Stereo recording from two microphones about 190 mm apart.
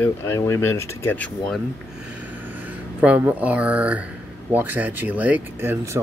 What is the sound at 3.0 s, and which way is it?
Speech, 10° right (ahead or behind).